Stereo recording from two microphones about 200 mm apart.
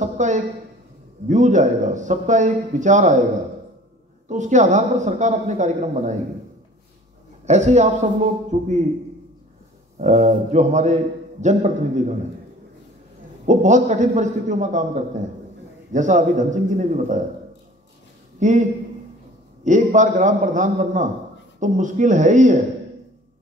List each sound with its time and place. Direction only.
0.0 s speech: 35° right (ahead or behind)
4.3 s speech: 35° right (ahead or behind)
7.4 s speech: 35° right (ahead or behind)
9.9 s speech: 35° right (ahead or behind)
13.5 s speech: 40° right (ahead or behind)
18.4 s speech: 40° right (ahead or behind)